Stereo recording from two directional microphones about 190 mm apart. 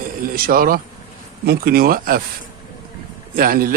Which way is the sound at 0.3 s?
50° right (ahead or behind).